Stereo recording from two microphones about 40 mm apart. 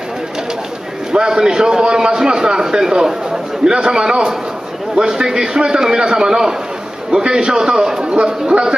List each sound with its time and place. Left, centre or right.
1.1 s a man's voice: centre